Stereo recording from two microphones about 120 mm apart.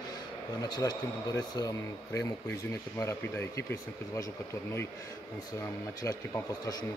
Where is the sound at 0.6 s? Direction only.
35° left (ahead or behind).